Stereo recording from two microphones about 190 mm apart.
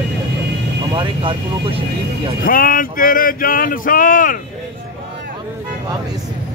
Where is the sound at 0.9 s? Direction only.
25° right (ahead or behind).